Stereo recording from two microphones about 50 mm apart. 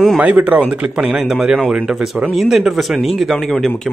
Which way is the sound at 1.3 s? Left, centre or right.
Centre.